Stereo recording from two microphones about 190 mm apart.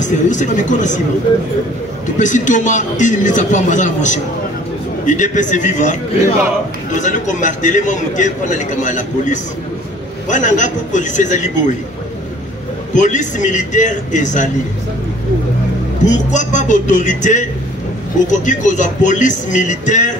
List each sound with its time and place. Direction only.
0.0 s a man's voice: 40° left (ahead or behind)
2.1 s a man's voice: 40° left (ahead or behind)
12.9 s a man's voice: 40° left (ahead or behind)
16.1 s a man's voice: 40° left (ahead or behind)